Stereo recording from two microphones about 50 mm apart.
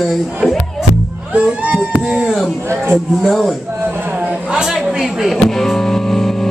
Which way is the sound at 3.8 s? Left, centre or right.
Right.